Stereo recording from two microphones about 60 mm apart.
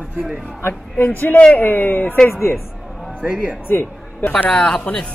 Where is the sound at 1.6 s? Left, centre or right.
Left.